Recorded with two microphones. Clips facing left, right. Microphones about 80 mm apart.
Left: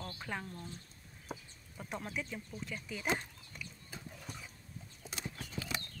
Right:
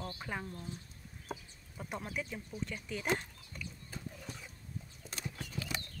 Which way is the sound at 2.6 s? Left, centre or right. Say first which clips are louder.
Right 1 dB; centre.